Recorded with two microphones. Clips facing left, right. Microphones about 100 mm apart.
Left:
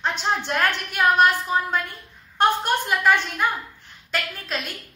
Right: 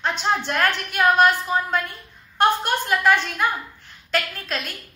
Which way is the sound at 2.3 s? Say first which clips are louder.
Right 1 dB; 10° left (ahead or behind).